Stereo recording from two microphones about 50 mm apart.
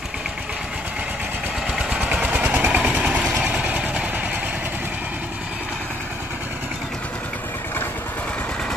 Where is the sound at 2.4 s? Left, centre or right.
Right.